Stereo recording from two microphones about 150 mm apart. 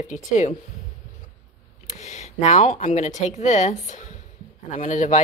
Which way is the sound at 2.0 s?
50° left (ahead or behind).